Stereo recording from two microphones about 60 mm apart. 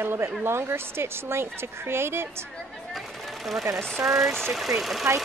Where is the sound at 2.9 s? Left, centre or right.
Centre.